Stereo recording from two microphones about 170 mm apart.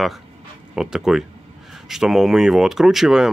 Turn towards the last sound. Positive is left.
turn(degrees=0)  # may be behind; listen again after turning